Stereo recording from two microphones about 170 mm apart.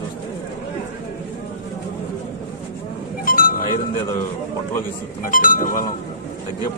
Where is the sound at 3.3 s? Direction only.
55° left (ahead or behind).